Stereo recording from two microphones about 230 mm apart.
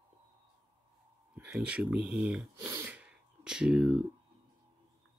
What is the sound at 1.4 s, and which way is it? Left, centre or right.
Speech, centre.